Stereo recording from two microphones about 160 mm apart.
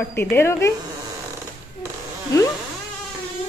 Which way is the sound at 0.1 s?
15° left (ahead or behind).